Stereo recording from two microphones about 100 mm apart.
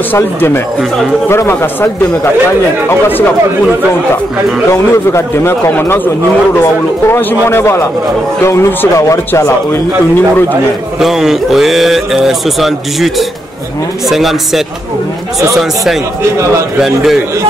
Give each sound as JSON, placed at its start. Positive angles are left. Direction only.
{"t": 0.1, "sound": "speech", "side_deg": 20}
{"t": 2.9, "sound": "speech", "side_deg": 20}
{"t": 4.6, "sound": "speech", "side_deg": 30}
{"t": 11.0, "sound": "speech", "side_deg": -5}